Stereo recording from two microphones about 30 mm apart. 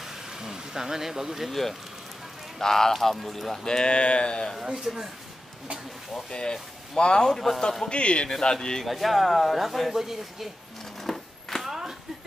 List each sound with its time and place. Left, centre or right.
0.4 s speech: centre
1.5 s speech: centre
2.9 s speech: centre
3.6 s speech: left
4.9 s speech: centre
6.3 s speech: left
7.2 s speech: centre
7.9 s speech: left
8.3 s speech: left
8.8 s speech: centre
9.9 s speech: centre
11.1 s a sound: centre
11.6 s a sound: centre